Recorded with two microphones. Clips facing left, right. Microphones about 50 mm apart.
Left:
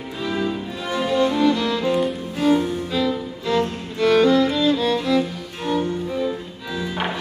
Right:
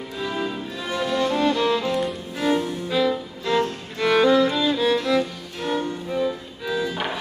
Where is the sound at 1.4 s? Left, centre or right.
Right.